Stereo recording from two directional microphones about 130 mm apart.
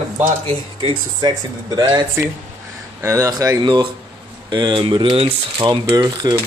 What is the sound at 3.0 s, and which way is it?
Speech, 25° right (ahead or behind).